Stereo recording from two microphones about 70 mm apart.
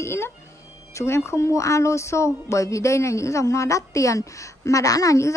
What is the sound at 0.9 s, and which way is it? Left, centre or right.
A woman's voice, left.